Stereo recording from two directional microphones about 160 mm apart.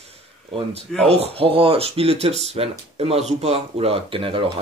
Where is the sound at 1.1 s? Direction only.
40° right (ahead or behind).